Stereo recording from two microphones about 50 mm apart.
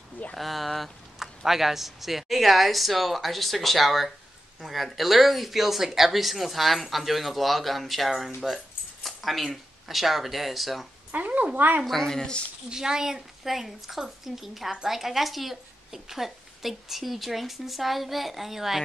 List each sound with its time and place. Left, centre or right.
0.4 s a woman's voice: centre
11.1 s speech: right
11.8 s speech: centre
12.6 s a woman's voice: centre